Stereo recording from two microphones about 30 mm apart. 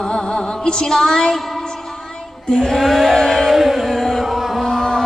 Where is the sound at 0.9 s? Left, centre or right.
Centre.